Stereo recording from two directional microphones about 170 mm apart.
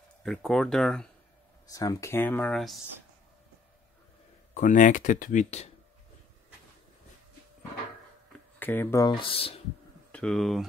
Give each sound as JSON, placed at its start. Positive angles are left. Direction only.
{"t": 0.2, "sound": "speech", "side_deg": 5}
{"t": 1.7, "sound": "speech", "side_deg": 20}
{"t": 2.5, "sound": "speech", "side_deg": 0}
{"t": 4.6, "sound": "speech", "side_deg": 50}
{"t": 8.5, "sound": "speech", "side_deg": 10}
{"t": 9.0, "sound": "speech", "side_deg": 30}
{"t": 10.1, "sound": "speech", "side_deg": 5}